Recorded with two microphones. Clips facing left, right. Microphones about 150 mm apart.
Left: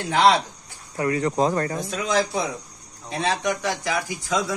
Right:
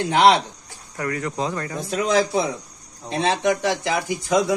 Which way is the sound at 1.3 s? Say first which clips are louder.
Left 5 dB; 40° left (ahead or behind).